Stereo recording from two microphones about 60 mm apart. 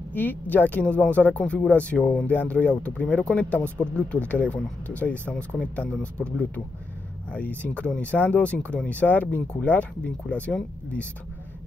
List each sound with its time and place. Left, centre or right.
0.1 s speech: left